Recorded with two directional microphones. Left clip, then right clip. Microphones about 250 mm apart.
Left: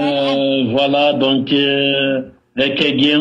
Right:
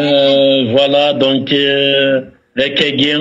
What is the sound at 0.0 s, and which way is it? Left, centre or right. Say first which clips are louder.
Mantra: right 6 dB; right.